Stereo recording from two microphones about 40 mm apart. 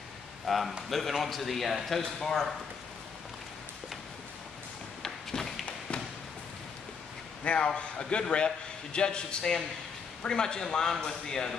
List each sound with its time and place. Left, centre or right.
0.5 s a man's voice: centre
5.0 s a sound: centre
7.4 s a man's voice: left